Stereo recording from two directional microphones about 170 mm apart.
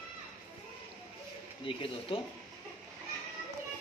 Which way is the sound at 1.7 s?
30° left (ahead or behind).